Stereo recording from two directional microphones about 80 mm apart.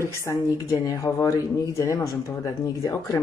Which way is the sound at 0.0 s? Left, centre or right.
Left.